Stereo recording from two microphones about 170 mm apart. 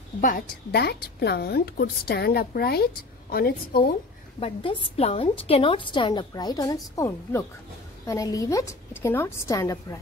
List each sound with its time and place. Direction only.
0.7 s a woman's voice: 75° left (ahead or behind)
4.4 s a woman's voice: 35° left (ahead or behind); by 9.9 s 20° left (ahead or behind)